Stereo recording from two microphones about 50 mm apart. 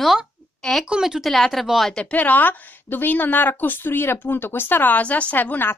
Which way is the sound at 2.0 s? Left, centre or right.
Left.